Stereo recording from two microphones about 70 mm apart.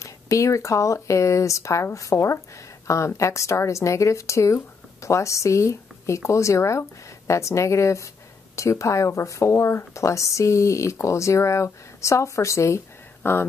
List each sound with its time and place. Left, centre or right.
0.0 s speech: left